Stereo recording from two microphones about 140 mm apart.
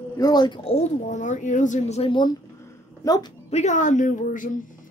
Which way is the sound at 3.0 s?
25° left (ahead or behind).